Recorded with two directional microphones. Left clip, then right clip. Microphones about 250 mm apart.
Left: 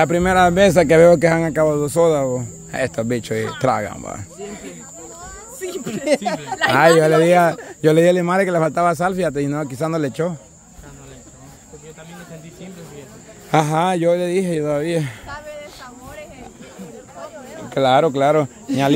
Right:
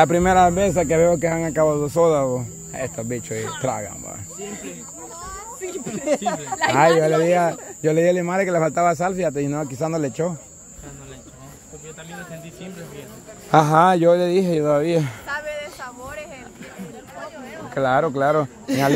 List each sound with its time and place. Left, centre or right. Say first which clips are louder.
0.0 s speech: even; centre
0.6 s speech: left 6 dB; left; by 2.4 s centre
2.7 s speech: left 7 dB; left
5.6 s speech: left 5 dB; left
7.0 s speech: left 4 dB; left
13.5 s speech: right 3 dB; centre
15.2 s a sound: right 5 dB; right
17.7 s speech: left 4 dB; left